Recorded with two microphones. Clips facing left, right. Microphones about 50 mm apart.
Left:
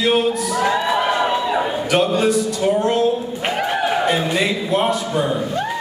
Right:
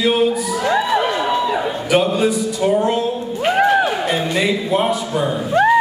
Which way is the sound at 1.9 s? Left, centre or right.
Centre.